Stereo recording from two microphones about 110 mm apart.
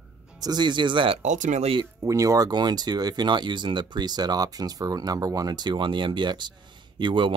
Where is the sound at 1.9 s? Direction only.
30° right (ahead or behind).